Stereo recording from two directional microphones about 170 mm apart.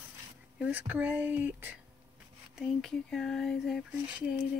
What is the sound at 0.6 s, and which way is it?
Speech, 10° right (ahead or behind).